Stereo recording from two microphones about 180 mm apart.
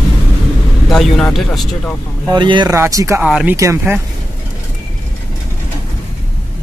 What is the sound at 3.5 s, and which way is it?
Speech, 15° right (ahead or behind).